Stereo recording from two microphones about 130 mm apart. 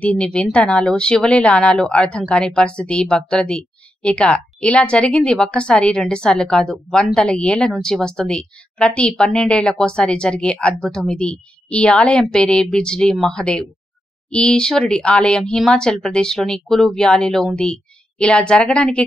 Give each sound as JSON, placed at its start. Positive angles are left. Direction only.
{"t": 0.0, "sound": "speech", "side_deg": 10}